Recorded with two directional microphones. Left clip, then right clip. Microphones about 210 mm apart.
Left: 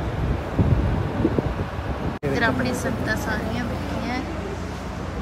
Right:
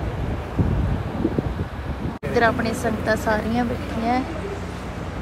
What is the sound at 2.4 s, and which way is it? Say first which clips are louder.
A woman's voice: right 5 dB; centre (ahead or behind).